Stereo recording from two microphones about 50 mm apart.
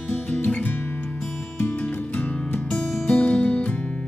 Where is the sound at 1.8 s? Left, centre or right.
Left.